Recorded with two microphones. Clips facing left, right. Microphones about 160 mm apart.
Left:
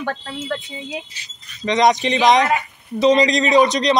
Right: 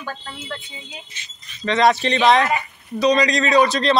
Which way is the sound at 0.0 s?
75° left (ahead or behind).